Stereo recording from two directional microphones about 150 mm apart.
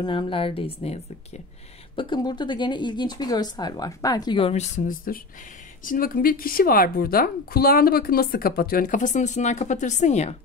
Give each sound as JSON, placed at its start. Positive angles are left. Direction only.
{"t": 0.0, "sound": "speech", "side_deg": 35}
{"t": 2.0, "sound": "a woman's voice", "side_deg": 30}